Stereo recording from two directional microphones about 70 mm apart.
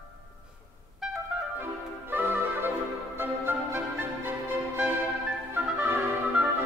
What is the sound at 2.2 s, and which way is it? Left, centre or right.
Music, right.